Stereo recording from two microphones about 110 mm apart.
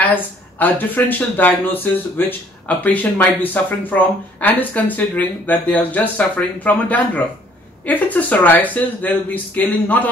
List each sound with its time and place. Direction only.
0.0 s speech: 15° left (ahead or behind)